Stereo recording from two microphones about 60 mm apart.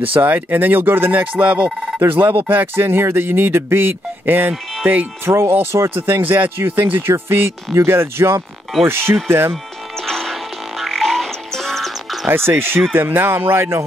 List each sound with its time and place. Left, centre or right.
0.1 s speech: right
2.0 s speech: right
10.0 s music: centre
10.8 s frog: centre
12.3 s speech: right